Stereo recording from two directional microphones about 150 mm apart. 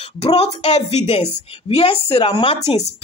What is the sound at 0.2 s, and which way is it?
Speech, 40° left (ahead or behind).